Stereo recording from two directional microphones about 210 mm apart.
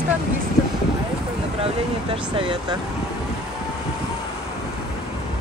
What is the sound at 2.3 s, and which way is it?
Speech, 20° right (ahead or behind).